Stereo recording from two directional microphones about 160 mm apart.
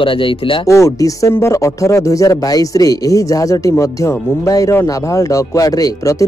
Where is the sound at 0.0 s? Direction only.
35° left (ahead or behind).